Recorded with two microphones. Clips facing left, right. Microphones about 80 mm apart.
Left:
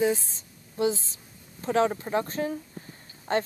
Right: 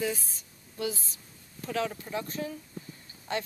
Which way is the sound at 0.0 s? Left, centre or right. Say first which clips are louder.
Left 7 dB; left.